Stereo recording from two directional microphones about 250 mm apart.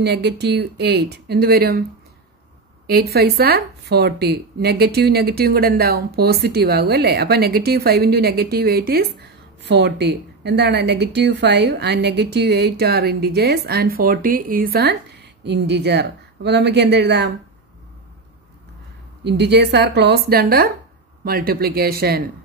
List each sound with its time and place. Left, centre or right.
0.0 s a woman's voice: right
2.9 s a woman's voice: right
19.2 s a woman's voice: right